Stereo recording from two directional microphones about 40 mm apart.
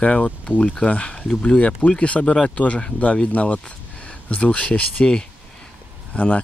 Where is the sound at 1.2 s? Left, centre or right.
Left.